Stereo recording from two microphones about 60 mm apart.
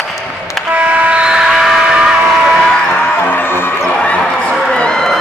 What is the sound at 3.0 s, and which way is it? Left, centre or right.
Music, left.